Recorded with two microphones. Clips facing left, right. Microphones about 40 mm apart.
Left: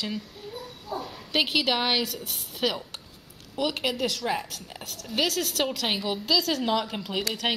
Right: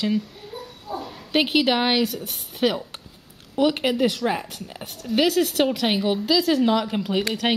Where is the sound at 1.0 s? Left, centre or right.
Centre.